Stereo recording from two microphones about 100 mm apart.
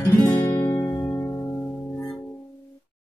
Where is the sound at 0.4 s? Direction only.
30° left (ahead or behind).